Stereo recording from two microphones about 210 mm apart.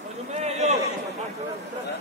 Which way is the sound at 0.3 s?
35° right (ahead or behind).